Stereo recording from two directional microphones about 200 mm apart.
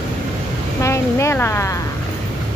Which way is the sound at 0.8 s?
15° left (ahead or behind).